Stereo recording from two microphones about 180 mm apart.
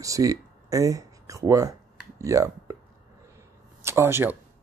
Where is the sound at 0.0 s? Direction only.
20° right (ahead or behind).